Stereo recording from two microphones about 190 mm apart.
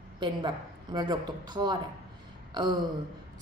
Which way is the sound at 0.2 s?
25° right (ahead or behind).